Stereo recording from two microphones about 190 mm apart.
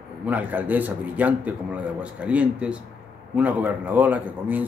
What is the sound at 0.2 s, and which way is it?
A man's voice, 10° right (ahead or behind).